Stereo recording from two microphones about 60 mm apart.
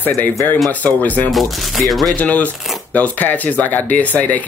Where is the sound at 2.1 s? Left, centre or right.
Left.